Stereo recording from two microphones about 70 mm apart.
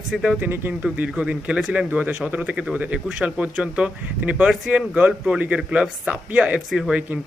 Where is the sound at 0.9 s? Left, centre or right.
Centre.